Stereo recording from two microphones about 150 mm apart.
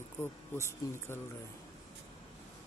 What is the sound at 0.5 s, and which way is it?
Speech, 15° left (ahead or behind).